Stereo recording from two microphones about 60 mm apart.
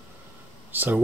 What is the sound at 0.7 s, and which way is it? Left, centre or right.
Speech, right.